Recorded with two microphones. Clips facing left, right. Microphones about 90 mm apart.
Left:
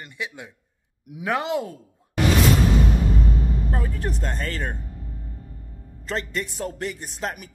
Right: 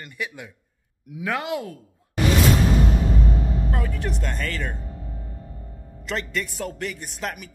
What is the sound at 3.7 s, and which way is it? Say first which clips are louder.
Speech: even; 30° left (ahead or behind).